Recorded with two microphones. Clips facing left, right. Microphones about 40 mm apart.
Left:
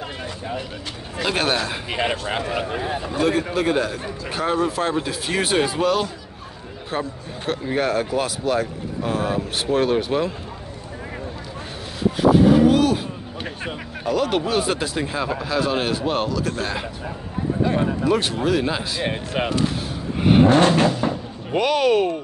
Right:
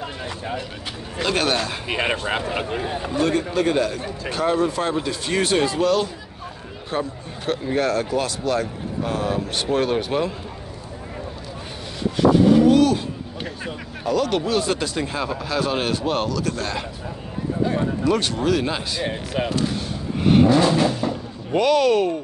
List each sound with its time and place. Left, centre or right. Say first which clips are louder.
1.2 s a man's voice: even; centre
1.9 s speech: right 3 dB; centre
2.9 s a man's voice: even; centre
12.2 s vehicle: even; centre
14.0 s a man's voice: even; centre
18.0 s a man's voice: right 2 dB; centre
19.0 s speech: left 1 dB; left
20.2 s vehicle: left 1 dB; centre
20.4 s vehicle: left 1 dB; left
21.5 s a man's voice: right 1 dB; centre